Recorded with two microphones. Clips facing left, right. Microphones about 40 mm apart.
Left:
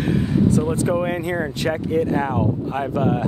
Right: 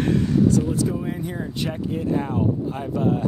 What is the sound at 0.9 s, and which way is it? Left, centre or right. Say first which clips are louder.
Speech: left 6 dB; left.